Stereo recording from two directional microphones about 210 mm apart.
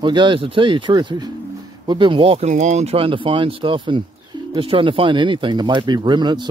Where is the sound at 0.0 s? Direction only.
20° right (ahead or behind).